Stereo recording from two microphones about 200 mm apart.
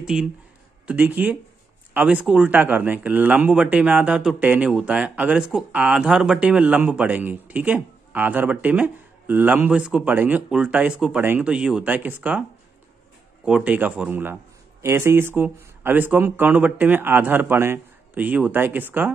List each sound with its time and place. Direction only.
0.0 s speech: 5° right (ahead or behind)
13.5 s speech: 5° right (ahead or behind)